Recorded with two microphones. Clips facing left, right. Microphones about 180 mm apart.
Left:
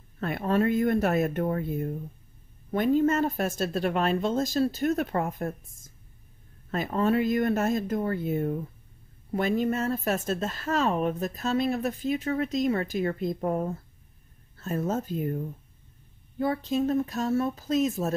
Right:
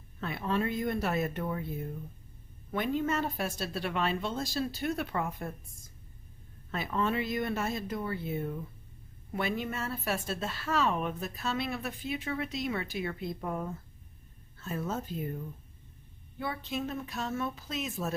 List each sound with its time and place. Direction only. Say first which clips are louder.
0.2 s a woman's voice: left 6 dB; 50° left (ahead or behind)
6.7 s a woman's voice: left 6 dB; 45° left (ahead or behind)